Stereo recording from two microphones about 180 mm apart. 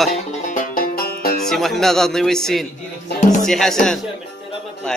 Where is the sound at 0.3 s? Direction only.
45° left (ahead or behind).